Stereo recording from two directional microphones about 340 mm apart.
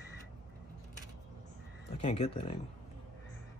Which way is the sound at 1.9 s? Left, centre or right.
Centre.